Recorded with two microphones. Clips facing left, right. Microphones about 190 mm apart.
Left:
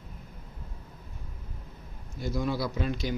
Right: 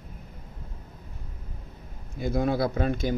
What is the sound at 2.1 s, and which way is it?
Speech, 55° right (ahead or behind).